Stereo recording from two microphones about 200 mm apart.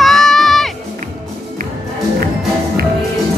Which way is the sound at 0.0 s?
Centre (ahead or behind).